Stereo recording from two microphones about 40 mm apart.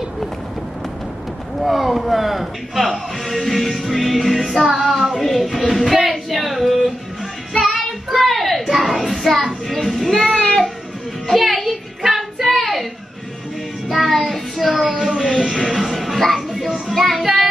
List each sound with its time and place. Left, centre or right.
1.6 s music: centre
5.2 s a sound: centre
7.5 s child singing: centre
8.1 s music: centre
10.3 s a sound: centre
11.2 s music: centre
13.8 s child singing: centre
15.0 s music: centre
16.6 s child singing: centre